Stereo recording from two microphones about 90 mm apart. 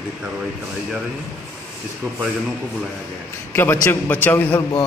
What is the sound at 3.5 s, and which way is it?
A man's voice, 25° left (ahead or behind).